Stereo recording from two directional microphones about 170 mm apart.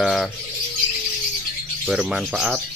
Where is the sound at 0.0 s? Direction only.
Centre (ahead or behind).